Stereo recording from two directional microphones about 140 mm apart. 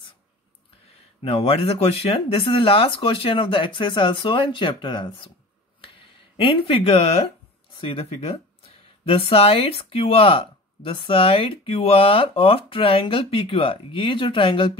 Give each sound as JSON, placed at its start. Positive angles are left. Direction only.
{"t": 1.2, "sound": "speech", "side_deg": 45}
{"t": 6.3, "sound": "speech", "side_deg": 40}